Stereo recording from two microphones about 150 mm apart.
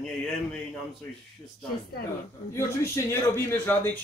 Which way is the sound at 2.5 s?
20° left (ahead or behind).